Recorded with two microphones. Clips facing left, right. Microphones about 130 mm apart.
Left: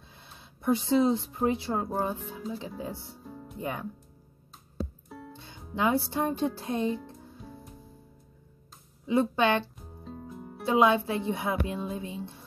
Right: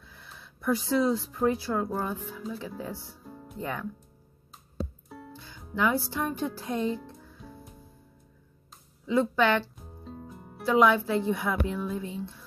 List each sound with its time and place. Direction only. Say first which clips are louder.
0.1 s speech: right 2 dB; 20° left (ahead or behind)
3.3 s music: left 2 dB; centre (ahead or behind)
3.5 s speech: even; 15° left (ahead or behind)
5.3 s speech: right 2 dB; 25° left (ahead or behind)
9.0 s speech: even; 20° left (ahead or behind)
9.8 s music: even; centre (ahead or behind)
10.6 s speech: right 1 dB; 20° left (ahead or behind)